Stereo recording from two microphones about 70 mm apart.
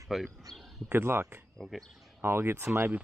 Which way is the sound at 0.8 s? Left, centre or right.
Right.